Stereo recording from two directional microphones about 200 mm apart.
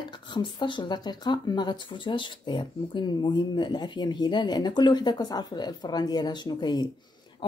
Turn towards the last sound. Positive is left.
turn(degrees=25)  # may be behind; listen again after turning